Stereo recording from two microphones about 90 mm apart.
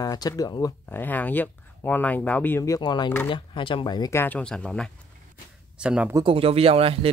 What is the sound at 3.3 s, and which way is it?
Speech, 65° left (ahead or behind).